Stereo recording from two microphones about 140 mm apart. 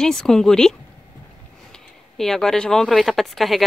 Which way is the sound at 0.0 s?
5° left (ahead or behind).